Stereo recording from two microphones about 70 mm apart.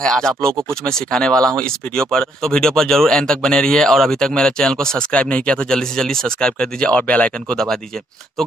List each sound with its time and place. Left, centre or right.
0.0 s speech: centre